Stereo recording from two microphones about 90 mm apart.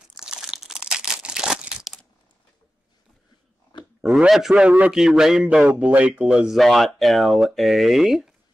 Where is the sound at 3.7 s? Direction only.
60° left (ahead or behind).